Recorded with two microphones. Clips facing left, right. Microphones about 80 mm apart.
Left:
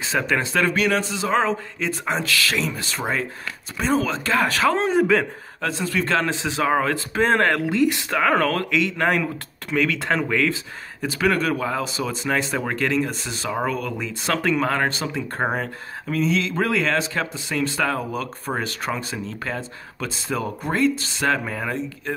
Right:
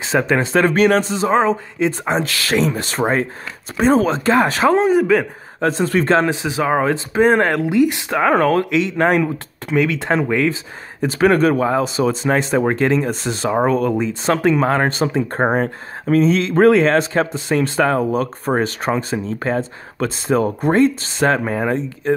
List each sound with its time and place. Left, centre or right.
0.0 s speech: right
1.3 s speech: centre
2.2 s speech: right
2.8 s speech: right
3.7 s speech: right
4.7 s a man's voice: centre
5.6 s speech: right
6.2 s speech: centre; by 22.1 s right